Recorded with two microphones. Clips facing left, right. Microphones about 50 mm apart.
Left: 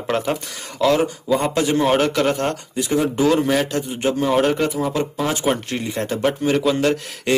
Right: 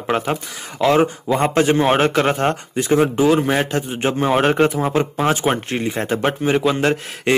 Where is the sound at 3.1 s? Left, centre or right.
Centre.